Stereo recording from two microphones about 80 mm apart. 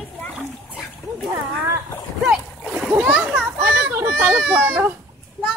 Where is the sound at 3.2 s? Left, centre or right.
Centre.